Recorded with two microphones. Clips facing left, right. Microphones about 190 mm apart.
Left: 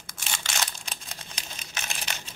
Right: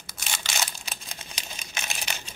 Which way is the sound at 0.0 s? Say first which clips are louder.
Right 1 dB; 5° right (ahead or behind).